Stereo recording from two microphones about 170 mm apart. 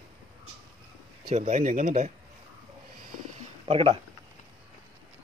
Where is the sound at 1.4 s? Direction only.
45° right (ahead or behind).